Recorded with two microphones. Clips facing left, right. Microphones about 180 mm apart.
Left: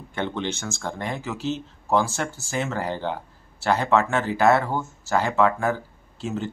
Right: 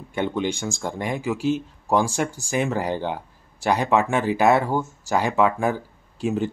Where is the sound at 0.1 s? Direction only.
10° right (ahead or behind).